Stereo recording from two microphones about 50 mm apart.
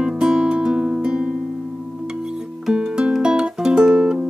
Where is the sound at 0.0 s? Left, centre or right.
Centre.